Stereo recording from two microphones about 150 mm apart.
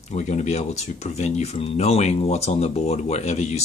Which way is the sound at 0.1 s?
50° left (ahead or behind).